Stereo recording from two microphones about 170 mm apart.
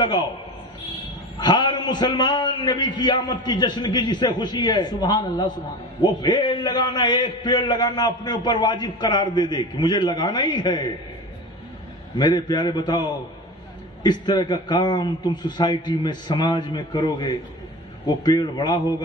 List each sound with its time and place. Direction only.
1.4 s a man's voice: 25° left (ahead or behind)
12.2 s a man's voice: 25° left (ahead or behind)